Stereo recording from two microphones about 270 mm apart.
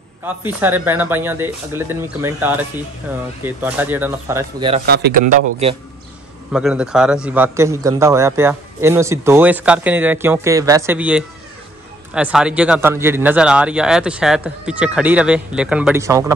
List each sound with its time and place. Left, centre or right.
0.2 s a man's voice: centre
4.8 s a man's voice: right
6.5 s a man's voice: centre